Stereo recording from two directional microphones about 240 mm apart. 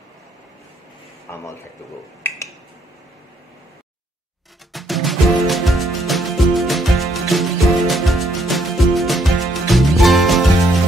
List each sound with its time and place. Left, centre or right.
2.2 s finger snapping: centre
4.7 s music: centre